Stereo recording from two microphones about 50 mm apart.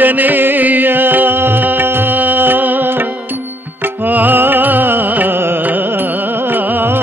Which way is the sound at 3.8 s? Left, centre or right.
Right.